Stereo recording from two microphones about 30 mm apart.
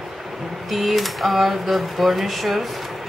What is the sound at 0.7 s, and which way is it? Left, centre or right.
Speech, centre.